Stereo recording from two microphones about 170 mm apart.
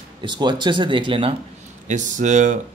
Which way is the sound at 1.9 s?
45° right (ahead or behind).